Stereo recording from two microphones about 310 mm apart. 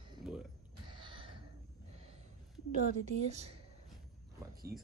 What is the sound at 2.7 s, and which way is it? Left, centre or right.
Speech, right.